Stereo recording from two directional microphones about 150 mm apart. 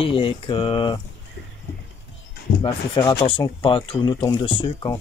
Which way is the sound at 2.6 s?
30° left (ahead or behind).